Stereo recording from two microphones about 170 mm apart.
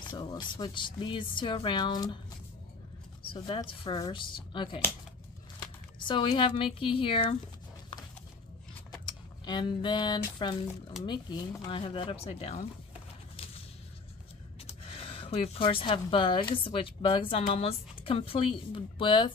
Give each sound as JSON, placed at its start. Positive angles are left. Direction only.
{"t": 0.0, "sound": "speech", "side_deg": 25}
{"t": 3.3, "sound": "speech", "side_deg": 30}
{"t": 5.9, "sound": "a woman's voice", "side_deg": 30}
{"t": 9.0, "sound": "a sound", "side_deg": 25}
{"t": 11.1, "sound": "a woman's voice", "side_deg": 25}
{"t": 14.7, "sound": "a woman's voice", "side_deg": 35}